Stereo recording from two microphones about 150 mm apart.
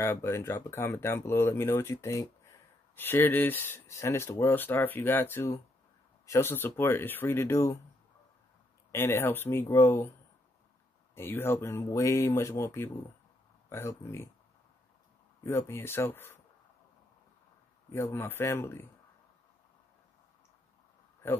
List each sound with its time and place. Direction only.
0.0 s speech: 15° left (ahead or behind)
8.9 s speech: 15° left (ahead or behind)
11.1 s speech: 15° left (ahead or behind)
15.4 s speech: 15° left (ahead or behind)
17.9 s speech: 15° left (ahead or behind)